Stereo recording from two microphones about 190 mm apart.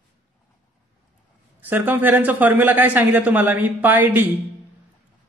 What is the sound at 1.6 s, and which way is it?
A man's voice, 10° right (ahead or behind).